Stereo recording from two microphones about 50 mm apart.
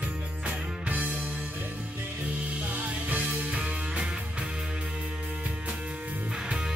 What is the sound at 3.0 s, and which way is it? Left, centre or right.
Music, right.